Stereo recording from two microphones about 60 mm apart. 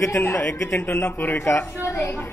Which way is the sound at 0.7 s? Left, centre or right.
Left.